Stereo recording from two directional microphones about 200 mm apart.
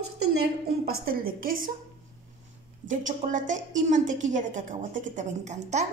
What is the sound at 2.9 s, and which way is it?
A woman's voice, 40° right (ahead or behind).